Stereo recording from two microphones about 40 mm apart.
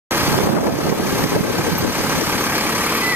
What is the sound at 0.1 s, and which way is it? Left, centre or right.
Boat, right.